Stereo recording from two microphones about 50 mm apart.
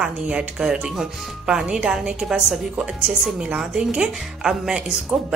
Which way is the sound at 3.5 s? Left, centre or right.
Centre.